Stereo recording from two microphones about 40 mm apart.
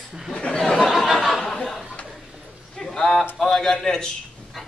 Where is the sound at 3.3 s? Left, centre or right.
Centre.